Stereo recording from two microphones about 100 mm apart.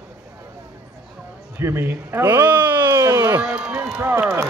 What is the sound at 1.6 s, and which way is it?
Speech, 25° right (ahead or behind).